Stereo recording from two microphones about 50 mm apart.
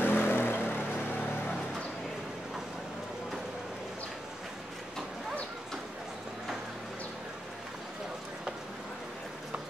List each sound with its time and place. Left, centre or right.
0.0 s vehicle: left